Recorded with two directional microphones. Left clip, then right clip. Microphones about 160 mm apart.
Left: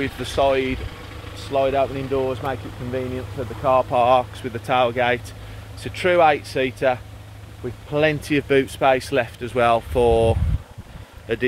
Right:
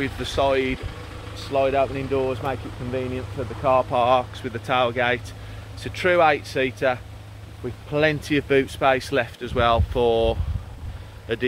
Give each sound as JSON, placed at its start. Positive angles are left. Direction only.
{"t": 0.0, "sound": "speech", "side_deg": 35}
{"t": 2.2, "sound": "speech", "side_deg": 20}